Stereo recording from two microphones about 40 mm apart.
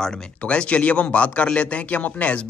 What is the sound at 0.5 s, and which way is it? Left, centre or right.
Speech, left.